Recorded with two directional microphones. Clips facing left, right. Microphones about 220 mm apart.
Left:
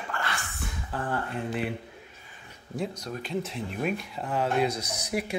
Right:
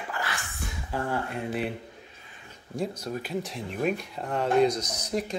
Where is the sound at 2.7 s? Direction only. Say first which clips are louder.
Right 2 dB; 5° right (ahead or behind).